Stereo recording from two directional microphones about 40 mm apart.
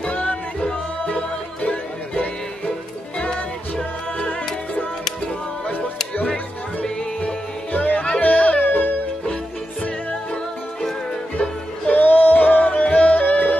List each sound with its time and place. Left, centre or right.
0.1 s music: left
0.7 s music: left
1.6 s music: left
3.2 s music: left
6.8 s music: left
7.7 s music: left
11.9 s music: left
13.2 s music: left